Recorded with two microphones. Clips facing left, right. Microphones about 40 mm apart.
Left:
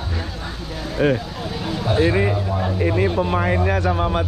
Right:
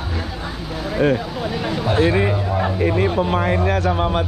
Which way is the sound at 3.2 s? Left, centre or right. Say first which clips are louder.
Right 1 dB; right.